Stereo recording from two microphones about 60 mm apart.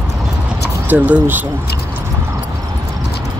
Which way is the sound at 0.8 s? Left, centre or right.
Right.